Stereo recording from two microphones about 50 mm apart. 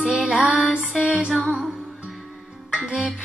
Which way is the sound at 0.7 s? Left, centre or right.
Centre.